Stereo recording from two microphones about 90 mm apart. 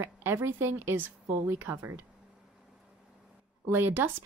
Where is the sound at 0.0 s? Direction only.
25° right (ahead or behind).